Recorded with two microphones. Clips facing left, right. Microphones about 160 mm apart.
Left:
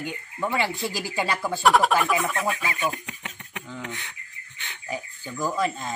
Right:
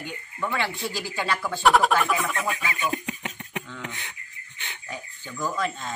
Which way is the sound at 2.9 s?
20° right (ahead or behind).